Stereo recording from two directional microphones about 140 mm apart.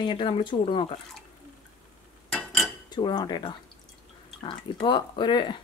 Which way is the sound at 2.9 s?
30° left (ahead or behind).